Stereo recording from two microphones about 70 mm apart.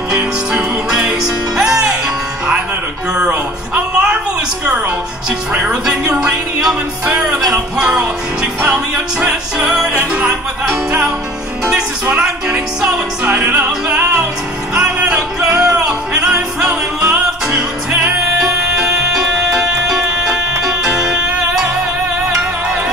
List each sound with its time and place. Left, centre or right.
0.1 s music: centre
3.2 s a sound: centre
5.5 s music: centre
10.9 s music: centre